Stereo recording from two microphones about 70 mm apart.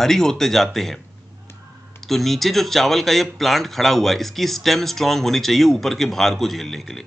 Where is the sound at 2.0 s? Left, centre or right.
Centre.